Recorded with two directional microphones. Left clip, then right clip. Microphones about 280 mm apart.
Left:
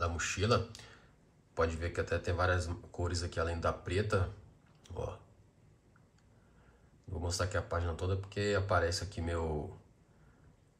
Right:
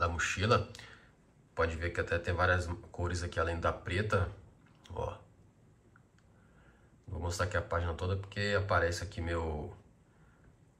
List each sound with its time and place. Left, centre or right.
0.0 s a man's voice: centre
7.2 s speech: centre